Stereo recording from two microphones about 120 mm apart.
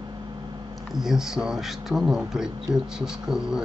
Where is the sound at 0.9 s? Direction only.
5° right (ahead or behind).